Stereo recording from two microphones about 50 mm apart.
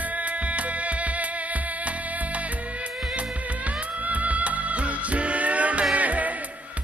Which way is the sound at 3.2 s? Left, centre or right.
Right.